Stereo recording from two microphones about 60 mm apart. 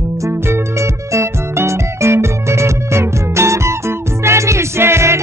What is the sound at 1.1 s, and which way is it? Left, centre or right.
Music, right.